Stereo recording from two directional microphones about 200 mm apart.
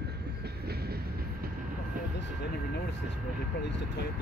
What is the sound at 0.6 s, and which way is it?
Train, 50° right (ahead or behind).